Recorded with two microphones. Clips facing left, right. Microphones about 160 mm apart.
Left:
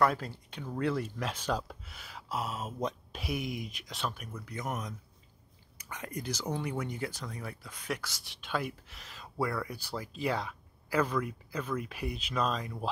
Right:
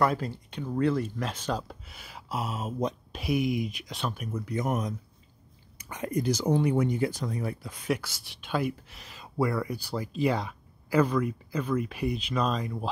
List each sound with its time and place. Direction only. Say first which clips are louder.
0.0 s speech: right 2 dB; centre (ahead or behind)
4.3 s speech: right 8 dB; 20° right (ahead or behind)
7.6 s speech: right 6 dB; 30° right (ahead or behind)
7.9 s speech: right 7 dB; 5° right (ahead or behind)